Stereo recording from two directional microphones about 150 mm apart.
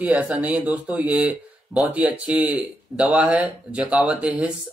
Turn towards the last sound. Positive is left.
turn(degrees=-5)  # may be behind; listen again after turning